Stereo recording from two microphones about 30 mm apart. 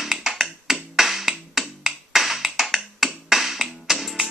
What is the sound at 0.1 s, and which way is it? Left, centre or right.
Music, centre.